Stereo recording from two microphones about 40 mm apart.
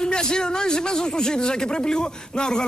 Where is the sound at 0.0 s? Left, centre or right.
Centre.